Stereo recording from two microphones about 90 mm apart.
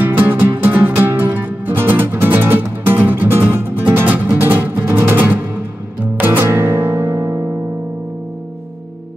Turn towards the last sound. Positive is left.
turn(degrees=-35)  # may be behind; listen again after turning